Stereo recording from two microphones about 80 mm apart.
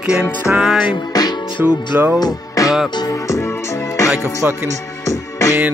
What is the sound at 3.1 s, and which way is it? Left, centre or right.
Music, left.